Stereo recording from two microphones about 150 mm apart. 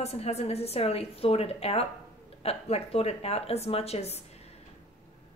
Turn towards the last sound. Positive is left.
turn(degrees=45)  # may be behind; listen again after turning